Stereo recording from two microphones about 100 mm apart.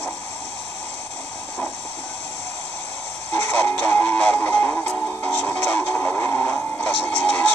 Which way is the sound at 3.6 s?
15° left (ahead or behind).